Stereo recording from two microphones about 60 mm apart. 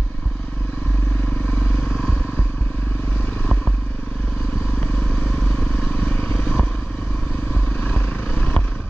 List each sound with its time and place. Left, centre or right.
4.7 s vehicle: centre
7.8 s vehicle: left